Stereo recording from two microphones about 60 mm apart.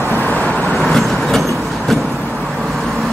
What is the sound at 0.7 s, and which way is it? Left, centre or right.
Vehicle, centre.